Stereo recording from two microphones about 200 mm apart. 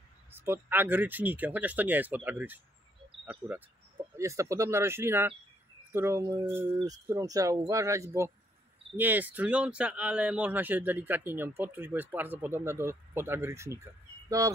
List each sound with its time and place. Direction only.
0.3 s speech: 10° right (ahead or behind)